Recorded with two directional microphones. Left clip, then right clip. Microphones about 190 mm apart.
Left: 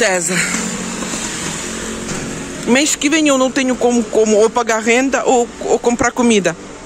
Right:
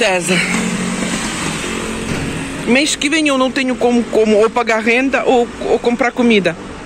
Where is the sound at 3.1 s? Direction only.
10° left (ahead or behind).